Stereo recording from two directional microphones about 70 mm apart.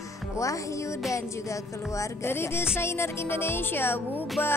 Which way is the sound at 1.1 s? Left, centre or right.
Left.